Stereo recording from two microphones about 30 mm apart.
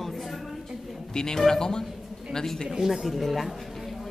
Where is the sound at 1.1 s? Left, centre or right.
Left.